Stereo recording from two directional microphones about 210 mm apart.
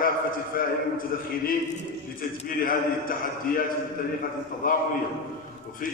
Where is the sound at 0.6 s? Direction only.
40° left (ahead or behind).